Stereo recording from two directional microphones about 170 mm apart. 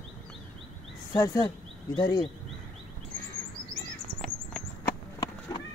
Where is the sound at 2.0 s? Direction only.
30° left (ahead or behind).